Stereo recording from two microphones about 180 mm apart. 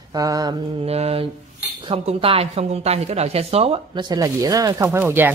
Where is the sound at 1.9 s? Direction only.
30° right (ahead or behind).